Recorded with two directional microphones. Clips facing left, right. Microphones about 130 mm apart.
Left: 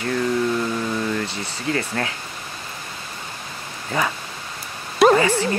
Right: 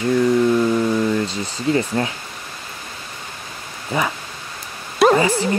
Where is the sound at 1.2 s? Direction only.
20° right (ahead or behind).